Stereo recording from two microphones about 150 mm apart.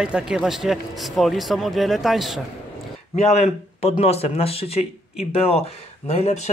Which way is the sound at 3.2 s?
45° left (ahead or behind).